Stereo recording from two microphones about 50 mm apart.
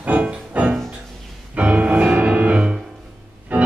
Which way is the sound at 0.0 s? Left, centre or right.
Right.